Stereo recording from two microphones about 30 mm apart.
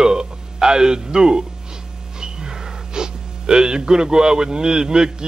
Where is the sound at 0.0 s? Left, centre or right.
Right.